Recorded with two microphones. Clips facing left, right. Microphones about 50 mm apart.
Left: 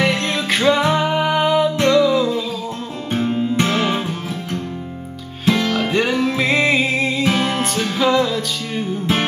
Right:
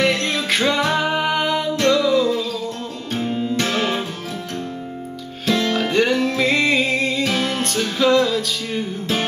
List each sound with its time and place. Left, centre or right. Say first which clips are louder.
0.0 s music: left 1 dB; centre
3.1 s music: left 3 dB; left
5.4 s music: left 2 dB; centre
7.5 s music: left 2 dB; centre